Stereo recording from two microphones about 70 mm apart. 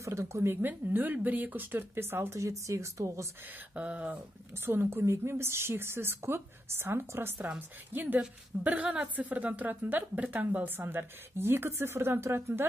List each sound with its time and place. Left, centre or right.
0.0 s speech: right
2.3 s speech: right
3.4 s speech: right
4.6 s a woman's voice: right
7.4 s a woman's voice: right